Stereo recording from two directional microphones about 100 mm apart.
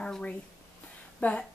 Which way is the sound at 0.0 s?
10° left (ahead or behind).